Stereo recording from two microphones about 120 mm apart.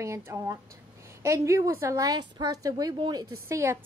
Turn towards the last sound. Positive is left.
turn(degrees=-20)  # may be behind; listen again after turning